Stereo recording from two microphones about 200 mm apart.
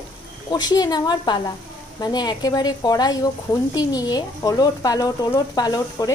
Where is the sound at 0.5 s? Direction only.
20° left (ahead or behind).